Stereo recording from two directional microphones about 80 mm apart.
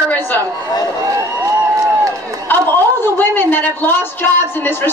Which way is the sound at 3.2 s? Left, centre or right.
Left.